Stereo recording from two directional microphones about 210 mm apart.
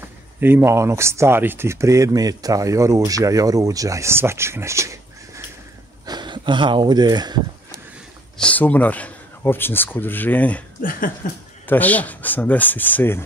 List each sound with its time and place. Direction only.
0.4 s speech: 10° right (ahead or behind)
8.4 s speech: 5° left (ahead or behind)
10.8 s a sound: 40° left (ahead or behind)
11.6 s speech: 10° left (ahead or behind)